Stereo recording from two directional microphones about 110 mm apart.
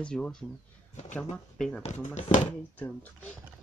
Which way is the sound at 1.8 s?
90° left.